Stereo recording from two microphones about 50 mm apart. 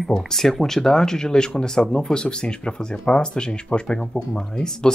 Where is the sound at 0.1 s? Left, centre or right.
Centre.